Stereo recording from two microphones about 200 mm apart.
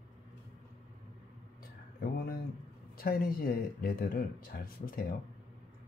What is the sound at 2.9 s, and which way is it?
Speech, 50° left (ahead or behind).